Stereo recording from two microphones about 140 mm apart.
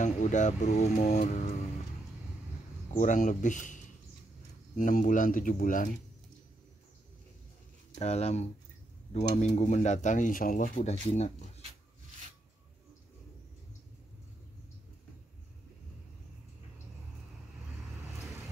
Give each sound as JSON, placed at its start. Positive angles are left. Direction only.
{"t": 0.0, "sound": "speech", "side_deg": 60}
{"t": 2.9, "sound": "speech", "side_deg": 65}
{"t": 8.0, "sound": "speech", "side_deg": 50}